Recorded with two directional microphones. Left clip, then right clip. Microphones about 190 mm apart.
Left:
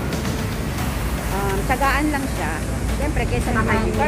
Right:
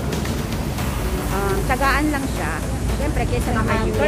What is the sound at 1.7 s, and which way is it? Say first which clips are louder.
Speech: even; 5° left (ahead or behind).